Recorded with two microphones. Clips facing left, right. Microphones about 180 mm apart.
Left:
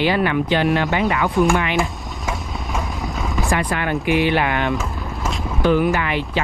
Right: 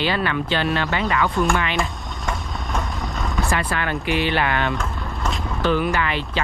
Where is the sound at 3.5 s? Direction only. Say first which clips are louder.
Left 4 dB; 15° left (ahead or behind).